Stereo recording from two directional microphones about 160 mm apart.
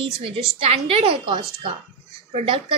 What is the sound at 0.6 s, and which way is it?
A woman's voice, 35° right (ahead or behind).